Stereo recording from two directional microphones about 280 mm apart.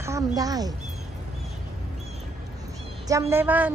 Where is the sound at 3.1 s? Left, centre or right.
Centre.